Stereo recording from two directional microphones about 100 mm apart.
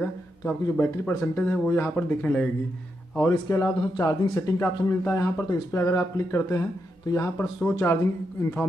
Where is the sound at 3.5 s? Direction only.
35° left (ahead or behind).